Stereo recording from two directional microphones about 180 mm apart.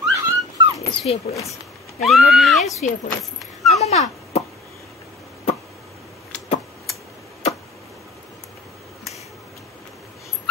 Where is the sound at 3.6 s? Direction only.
35° left (ahead or behind).